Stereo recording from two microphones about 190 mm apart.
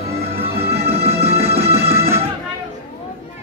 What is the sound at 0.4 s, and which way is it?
Music, 15° right (ahead or behind).